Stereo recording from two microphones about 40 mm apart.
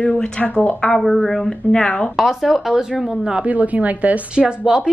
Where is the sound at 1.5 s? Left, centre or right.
Left.